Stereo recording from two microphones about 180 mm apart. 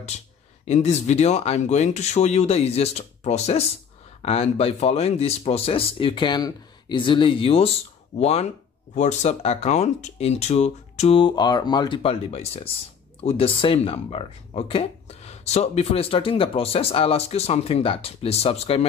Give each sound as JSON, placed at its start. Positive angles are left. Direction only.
{"t": 0.7, "sound": "speech", "side_deg": 40}